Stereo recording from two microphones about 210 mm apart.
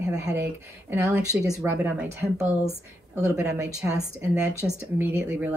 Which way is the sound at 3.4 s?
10° right (ahead or behind).